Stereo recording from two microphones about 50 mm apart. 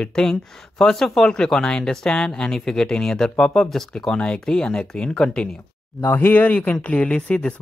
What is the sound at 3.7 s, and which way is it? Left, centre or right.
Speech, centre.